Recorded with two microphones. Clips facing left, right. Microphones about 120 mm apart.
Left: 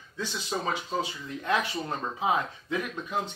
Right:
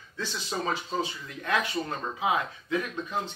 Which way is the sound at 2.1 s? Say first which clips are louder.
Even; 35° left (ahead or behind).